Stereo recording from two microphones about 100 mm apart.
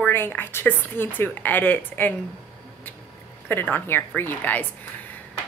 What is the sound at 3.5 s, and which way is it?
A woman's voice, 20° left (ahead or behind).